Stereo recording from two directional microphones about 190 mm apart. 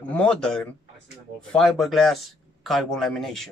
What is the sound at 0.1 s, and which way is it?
Speech, 5° left (ahead or behind).